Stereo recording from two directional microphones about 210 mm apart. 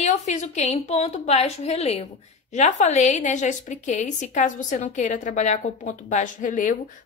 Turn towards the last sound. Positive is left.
turn(degrees=40)  # may be behind; listen again after turning